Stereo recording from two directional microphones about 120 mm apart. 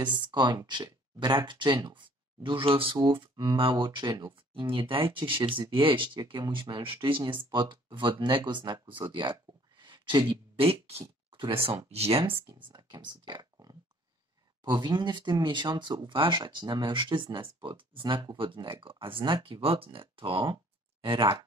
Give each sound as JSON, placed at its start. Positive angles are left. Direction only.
{"t": 0.0, "sound": "speech", "side_deg": -35}